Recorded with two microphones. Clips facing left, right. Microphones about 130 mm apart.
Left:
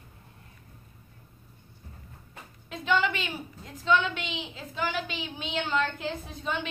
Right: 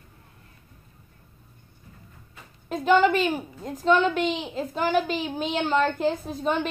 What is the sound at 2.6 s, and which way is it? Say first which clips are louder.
A woman's voice: right 8 dB; 45° right (ahead or behind).